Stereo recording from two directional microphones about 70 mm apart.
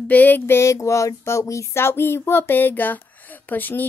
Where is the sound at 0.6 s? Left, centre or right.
Left.